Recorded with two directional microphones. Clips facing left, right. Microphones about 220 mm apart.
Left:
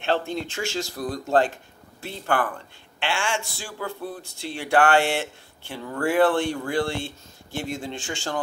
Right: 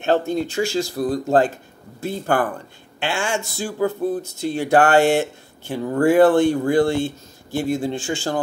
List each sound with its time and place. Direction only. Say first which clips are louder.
0.0 s speech: right 6 dB; 45° right (ahead or behind)